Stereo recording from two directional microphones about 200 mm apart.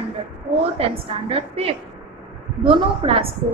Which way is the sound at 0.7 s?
30° right (ahead or behind).